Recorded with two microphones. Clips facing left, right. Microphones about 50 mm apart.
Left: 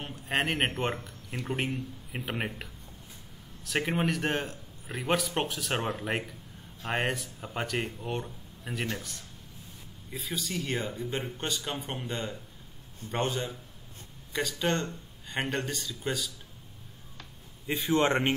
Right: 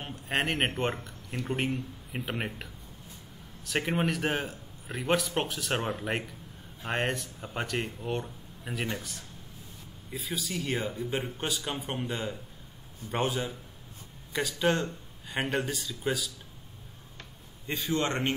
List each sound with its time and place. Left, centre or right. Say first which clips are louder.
0.0 s a man's voice: even; centre
17.8 s a man's voice: left 4 dB; left